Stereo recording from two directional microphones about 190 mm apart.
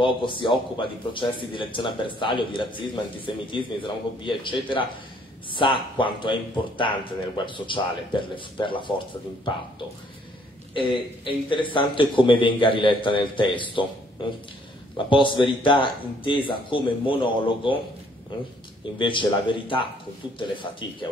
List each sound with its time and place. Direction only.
0.0 s speech: 25° left (ahead or behind)
10.7 s speech: 25° left (ahead or behind)
15.0 s speech: 25° left (ahead or behind)
18.9 s speech: 25° left (ahead or behind)